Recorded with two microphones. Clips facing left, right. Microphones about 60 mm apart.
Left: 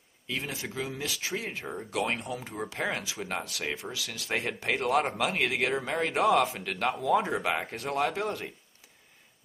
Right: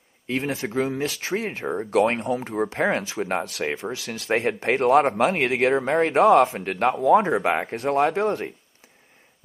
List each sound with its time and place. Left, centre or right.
0.3 s speech: right